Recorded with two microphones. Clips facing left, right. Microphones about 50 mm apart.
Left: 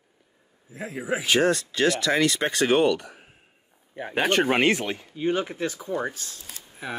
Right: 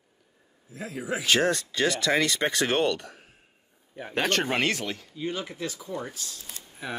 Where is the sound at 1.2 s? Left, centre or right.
Centre; by 6.4 s left.